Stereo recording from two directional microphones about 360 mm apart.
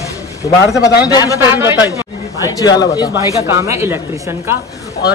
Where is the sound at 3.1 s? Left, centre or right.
Centre.